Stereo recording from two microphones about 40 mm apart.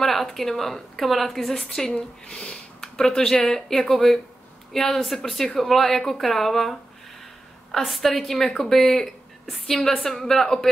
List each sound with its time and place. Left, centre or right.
0.0 s speech: centre
2.0 s a woman's voice: left